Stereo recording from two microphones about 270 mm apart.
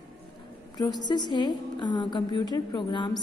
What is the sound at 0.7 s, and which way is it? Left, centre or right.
A woman's voice, centre.